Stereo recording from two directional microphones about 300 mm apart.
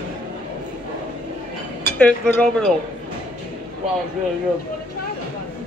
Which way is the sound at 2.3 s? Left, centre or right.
Centre.